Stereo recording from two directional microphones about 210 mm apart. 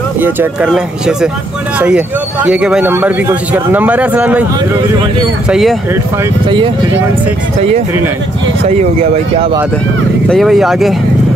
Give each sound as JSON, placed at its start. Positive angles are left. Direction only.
{"t": 0.2, "sound": "a man's voice", "side_deg": -10}
{"t": 8.6, "sound": "speech", "side_deg": -30}
{"t": 10.3, "sound": "speech", "side_deg": 0}